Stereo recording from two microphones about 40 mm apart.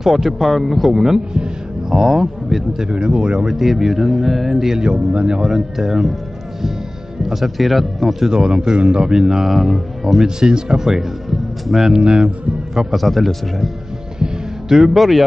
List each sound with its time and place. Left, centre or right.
0.0 s speech: centre
1.3 s music: right
2.0 s speech: centre; by 3.4 s right
3.4 s speech: centre
4.8 s speech: right
7.2 s speech: centre
8.3 s speech: centre
9.1 s speech: centre
9.5 s speech: centre
10.2 s a man's voice: centre
12.0 s speech: right
12.9 s speech: centre
14.2 s music: centre
15.0 s speech: centre